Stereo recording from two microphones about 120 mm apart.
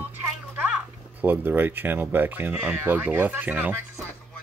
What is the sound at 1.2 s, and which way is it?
Speech, 15° right (ahead or behind).